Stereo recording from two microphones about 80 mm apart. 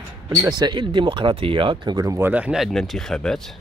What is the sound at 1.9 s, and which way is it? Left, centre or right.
Speech, right.